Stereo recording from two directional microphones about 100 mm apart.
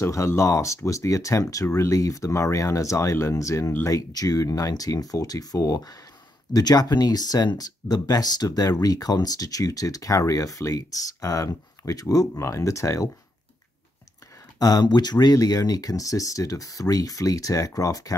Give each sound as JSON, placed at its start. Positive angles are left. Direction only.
{"t": 0.0, "sound": "speech", "side_deg": 25}
{"t": 14.6, "sound": "speech", "side_deg": 40}